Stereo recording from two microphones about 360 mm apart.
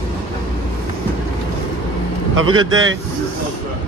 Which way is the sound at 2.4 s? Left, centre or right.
Right.